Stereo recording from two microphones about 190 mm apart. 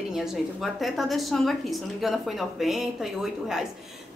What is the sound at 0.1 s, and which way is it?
A woman's voice, centre (ahead or behind).